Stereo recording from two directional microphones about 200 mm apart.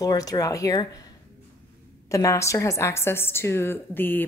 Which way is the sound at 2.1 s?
15° left (ahead or behind).